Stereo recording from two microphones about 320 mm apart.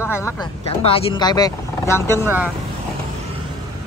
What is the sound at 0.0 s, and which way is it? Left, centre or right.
Speech, centre.